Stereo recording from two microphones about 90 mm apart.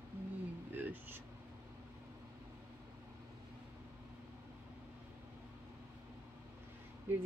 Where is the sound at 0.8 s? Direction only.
20° right (ahead or behind).